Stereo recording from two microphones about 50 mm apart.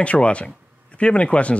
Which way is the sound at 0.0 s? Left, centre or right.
Left.